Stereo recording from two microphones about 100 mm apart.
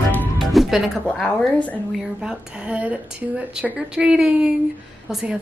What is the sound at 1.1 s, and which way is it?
Speech, 10° left (ahead or behind).